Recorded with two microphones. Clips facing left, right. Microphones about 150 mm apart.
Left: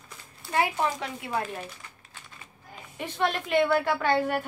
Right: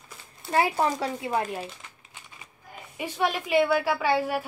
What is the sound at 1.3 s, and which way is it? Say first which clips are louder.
Speech: even; 15° right (ahead or behind).